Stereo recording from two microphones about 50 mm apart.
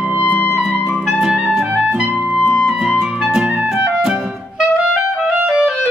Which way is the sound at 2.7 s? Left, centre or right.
Centre.